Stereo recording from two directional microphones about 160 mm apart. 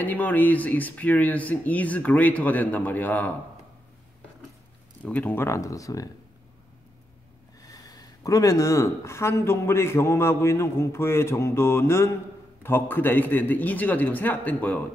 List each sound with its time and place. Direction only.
0.0 s speech: 10° left (ahead or behind)
5.0 s speech: 10° left (ahead or behind)
7.6 s speech: 20° left (ahead or behind)